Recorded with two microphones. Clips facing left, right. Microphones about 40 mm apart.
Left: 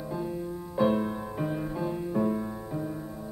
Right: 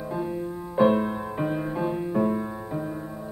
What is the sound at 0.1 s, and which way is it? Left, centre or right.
Music, right.